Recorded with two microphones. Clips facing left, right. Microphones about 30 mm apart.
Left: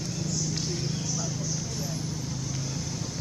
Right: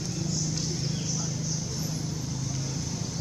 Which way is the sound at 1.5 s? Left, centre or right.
Centre.